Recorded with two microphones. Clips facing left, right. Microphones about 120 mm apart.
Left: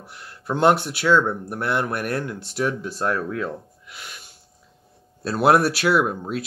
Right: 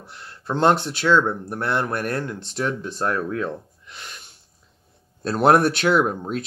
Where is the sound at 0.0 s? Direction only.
10° left (ahead or behind).